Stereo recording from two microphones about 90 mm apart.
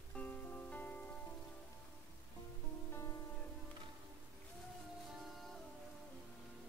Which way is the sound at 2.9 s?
30° left (ahead or behind).